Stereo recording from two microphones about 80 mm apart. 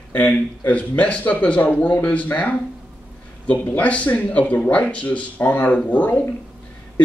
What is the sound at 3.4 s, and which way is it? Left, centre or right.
Speech, centre.